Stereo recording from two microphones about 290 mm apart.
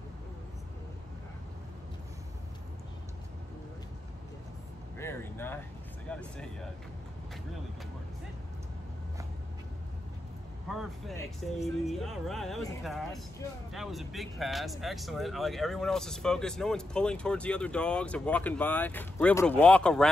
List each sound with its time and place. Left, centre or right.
4.9 s speech: centre
10.7 s speech: centre